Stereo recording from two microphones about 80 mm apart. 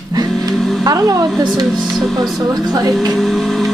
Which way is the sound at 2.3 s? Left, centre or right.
Right.